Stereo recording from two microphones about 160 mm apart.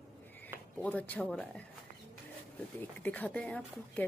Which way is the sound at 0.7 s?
10° left (ahead or behind).